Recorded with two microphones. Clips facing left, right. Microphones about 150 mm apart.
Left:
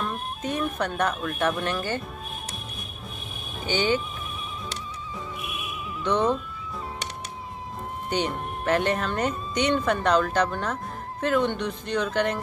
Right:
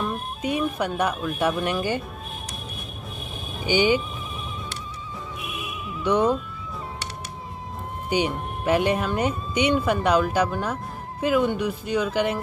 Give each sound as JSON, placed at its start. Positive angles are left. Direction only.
{"t": 0.0, "sound": "speech", "side_deg": -5}
{"t": 3.6, "sound": "speech", "side_deg": -10}
{"t": 5.9, "sound": "music", "side_deg": -5}
{"t": 8.1, "sound": "speech", "side_deg": -5}